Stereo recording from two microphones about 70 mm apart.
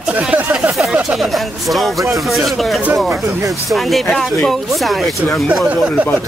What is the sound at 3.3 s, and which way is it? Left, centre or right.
Speech, right.